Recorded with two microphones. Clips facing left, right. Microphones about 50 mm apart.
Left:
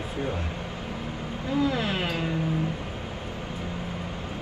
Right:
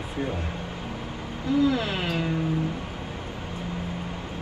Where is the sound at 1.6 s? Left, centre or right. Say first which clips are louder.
Right 2 dB; left.